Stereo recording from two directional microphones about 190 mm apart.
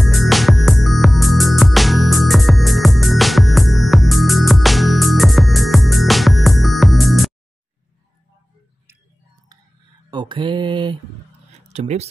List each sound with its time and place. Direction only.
0.0 s music: centre (ahead or behind)
10.1 s mantra: 25° right (ahead or behind)
11.7 s speech: 35° right (ahead or behind)